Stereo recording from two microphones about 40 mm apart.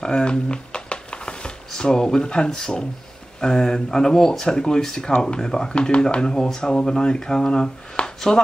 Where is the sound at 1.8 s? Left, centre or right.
Centre.